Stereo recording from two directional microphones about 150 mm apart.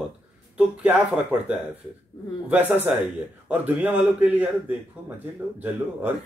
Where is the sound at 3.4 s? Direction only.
10° right (ahead or behind).